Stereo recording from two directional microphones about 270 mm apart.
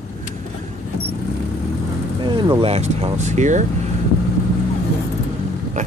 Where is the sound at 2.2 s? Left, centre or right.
Centre.